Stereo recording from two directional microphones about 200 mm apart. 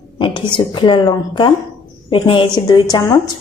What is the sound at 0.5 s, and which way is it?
A woman's voice, 25° left (ahead or behind).